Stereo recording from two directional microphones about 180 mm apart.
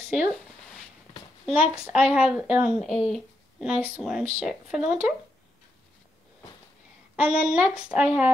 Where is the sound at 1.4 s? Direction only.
5° right (ahead or behind).